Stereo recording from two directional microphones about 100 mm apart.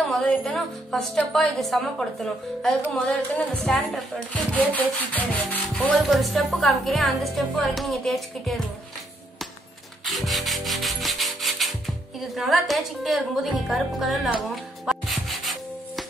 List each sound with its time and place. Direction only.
0.0 s speech: 5° left (ahead or behind)
3.3 s rub: 15° left (ahead or behind)
6.0 s speech: centre (ahead or behind)
10.0 s rub: centre (ahead or behind)
12.2 s a woman's voice: centre (ahead or behind)